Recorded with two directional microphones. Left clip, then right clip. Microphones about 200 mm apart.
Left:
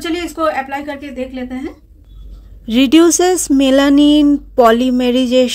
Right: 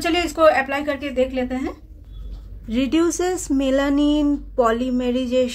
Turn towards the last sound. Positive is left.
turn(degrees=40)  # may be behind; listen again after turning